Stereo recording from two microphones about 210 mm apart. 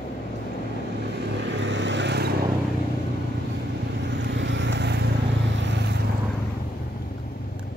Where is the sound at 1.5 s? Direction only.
60° right (ahead or behind).